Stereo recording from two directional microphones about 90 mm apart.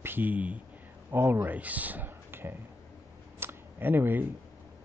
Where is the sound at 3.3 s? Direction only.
25° right (ahead or behind).